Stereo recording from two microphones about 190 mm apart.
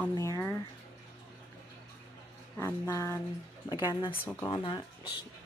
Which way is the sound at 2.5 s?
15° left (ahead or behind).